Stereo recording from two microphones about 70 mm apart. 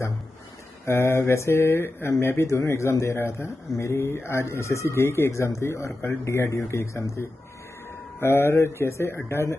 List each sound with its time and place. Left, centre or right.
0.8 s speech: left
8.2 s speech: left